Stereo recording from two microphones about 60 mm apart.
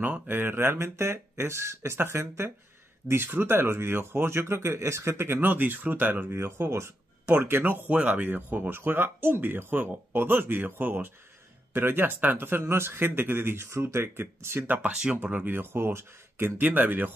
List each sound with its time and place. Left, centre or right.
0.3 s speech: right
6.3 s speech: right
7.9 s speech: right
14.9 s speech: centre
15.4 s speech: right
16.5 s speech: right